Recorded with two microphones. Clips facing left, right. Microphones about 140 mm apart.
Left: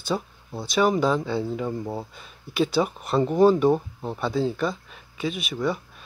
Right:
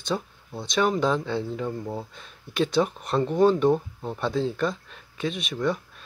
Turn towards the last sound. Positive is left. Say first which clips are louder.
# even
turn(degrees=5)  # may be behind; listen again after turning